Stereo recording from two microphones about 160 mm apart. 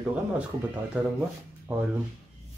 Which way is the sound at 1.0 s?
10° right (ahead or behind).